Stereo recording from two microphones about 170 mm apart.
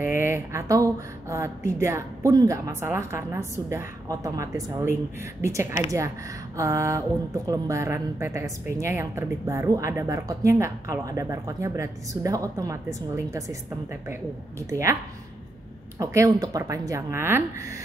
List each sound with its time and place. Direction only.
0.1 s a woman's voice: 15° right (ahead or behind)
14.7 s a woman's voice: 15° right (ahead or behind)
16.0 s a woman's voice: 20° right (ahead or behind)